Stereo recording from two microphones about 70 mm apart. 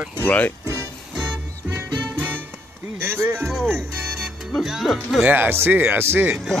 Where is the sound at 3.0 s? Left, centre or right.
Right.